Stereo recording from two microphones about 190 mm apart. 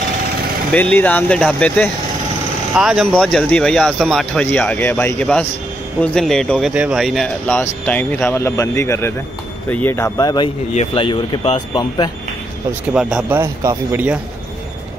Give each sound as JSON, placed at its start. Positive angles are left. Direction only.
{"t": 0.7, "sound": "speech", "side_deg": 10}
{"t": 10.7, "sound": "speech", "side_deg": 30}
{"t": 12.9, "sound": "speech", "side_deg": -5}